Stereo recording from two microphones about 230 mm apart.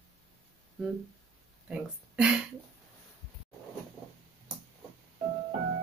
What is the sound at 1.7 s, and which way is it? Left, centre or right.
Speech, centre.